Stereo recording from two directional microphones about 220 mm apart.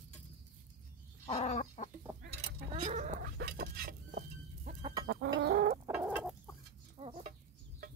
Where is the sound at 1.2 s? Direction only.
30° left (ahead or behind).